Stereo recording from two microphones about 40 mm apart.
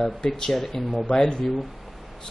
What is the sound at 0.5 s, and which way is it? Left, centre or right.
Speech, centre.